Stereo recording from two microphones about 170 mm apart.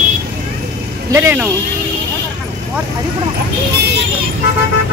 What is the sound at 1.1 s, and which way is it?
Speech, 15° right (ahead or behind).